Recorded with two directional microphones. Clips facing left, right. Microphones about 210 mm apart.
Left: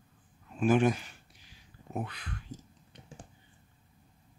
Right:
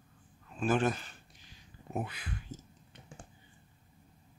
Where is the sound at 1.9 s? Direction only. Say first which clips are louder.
Even; 5° right (ahead or behind).